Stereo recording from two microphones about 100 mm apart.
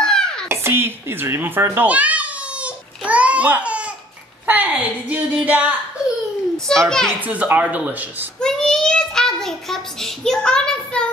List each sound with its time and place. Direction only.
0.0 s a sound: 5° left (ahead or behind)
0.5 s a sound: 25° right (ahead or behind)
4.5 s speech: 15° right (ahead or behind)
6.9 s a child's voice: 5° left (ahead or behind)
7.2 s speech: 15° right (ahead or behind)
8.4 s child singing: 5° left (ahead or behind)